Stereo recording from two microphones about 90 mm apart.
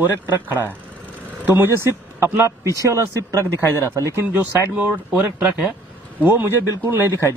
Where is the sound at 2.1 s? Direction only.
25° right (ahead or behind).